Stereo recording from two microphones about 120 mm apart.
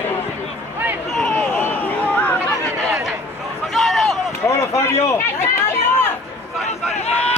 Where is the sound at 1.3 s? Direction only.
15° left (ahead or behind).